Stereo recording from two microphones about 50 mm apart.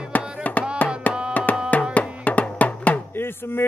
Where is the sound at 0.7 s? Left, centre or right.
Left.